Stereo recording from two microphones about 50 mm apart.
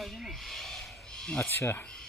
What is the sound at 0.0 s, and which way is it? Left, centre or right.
Snake, centre.